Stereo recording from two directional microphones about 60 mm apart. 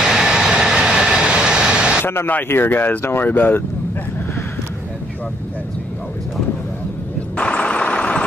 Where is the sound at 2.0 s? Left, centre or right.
Left.